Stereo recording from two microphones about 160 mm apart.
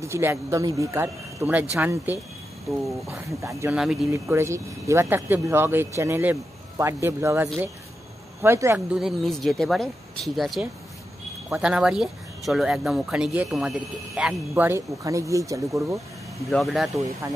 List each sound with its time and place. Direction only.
0.0 s speech: 15° right (ahead or behind)
3.7 s speech: 5° right (ahead or behind)
4.1 s speech: 15° right (ahead or behind)
8.7 s speech: 5° right (ahead or behind); by 16.0 s 20° right (ahead or behind)
16.4 s speech: centre (ahead or behind)